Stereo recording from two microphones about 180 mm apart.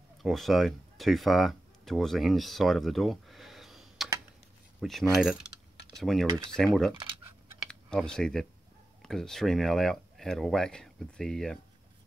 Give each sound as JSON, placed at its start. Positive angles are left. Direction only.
{"t": 0.2, "sound": "speech", "side_deg": 0}
{"t": 7.9, "sound": "speech", "side_deg": 5}